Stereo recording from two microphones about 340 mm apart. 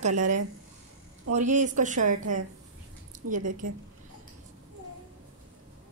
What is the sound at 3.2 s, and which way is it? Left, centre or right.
Speech, right.